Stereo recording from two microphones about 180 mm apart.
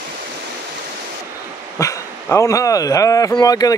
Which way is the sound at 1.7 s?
15° left (ahead or behind).